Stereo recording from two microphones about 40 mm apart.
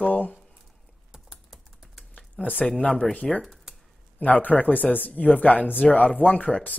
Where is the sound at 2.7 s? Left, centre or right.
Left.